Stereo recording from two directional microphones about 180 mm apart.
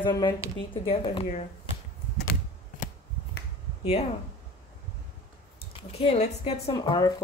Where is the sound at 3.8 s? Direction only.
35° left (ahead or behind).